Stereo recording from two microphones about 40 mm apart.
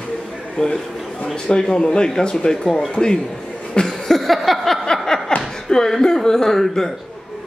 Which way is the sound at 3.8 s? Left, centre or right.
Centre.